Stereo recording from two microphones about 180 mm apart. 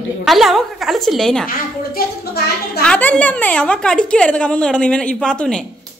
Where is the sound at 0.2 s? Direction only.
Centre (ahead or behind).